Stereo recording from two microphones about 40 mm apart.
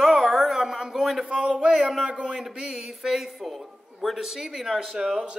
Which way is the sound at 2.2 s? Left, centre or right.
Centre.